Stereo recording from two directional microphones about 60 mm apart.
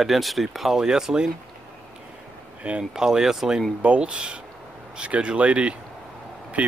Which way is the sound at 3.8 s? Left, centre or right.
Centre.